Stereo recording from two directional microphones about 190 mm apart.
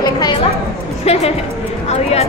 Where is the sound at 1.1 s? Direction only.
30° left (ahead or behind).